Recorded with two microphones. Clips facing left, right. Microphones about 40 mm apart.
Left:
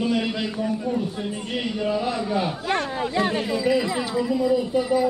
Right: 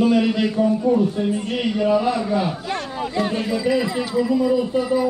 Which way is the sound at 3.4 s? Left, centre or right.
Centre.